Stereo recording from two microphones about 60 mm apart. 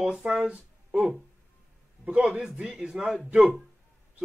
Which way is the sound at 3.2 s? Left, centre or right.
Right.